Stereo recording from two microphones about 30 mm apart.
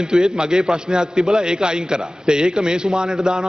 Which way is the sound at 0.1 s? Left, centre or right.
Right.